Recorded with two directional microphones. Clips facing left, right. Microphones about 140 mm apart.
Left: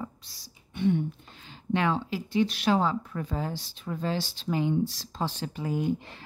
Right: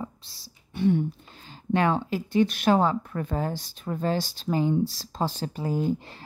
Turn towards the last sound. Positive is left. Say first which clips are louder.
# right 2 dB
turn(degrees=-35)  # may be behind; listen again after turning